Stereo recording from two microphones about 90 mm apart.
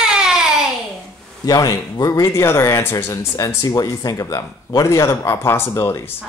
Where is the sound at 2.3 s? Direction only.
30° left (ahead or behind).